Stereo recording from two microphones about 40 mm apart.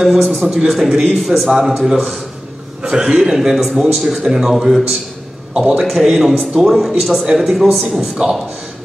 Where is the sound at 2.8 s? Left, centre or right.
Right.